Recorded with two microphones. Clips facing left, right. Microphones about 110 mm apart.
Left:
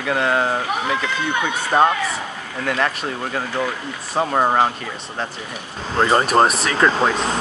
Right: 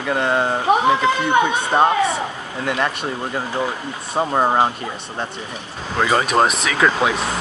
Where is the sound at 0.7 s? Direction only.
30° right (ahead or behind).